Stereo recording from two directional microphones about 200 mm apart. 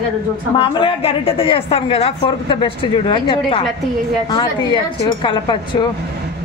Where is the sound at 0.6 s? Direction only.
25° left (ahead or behind).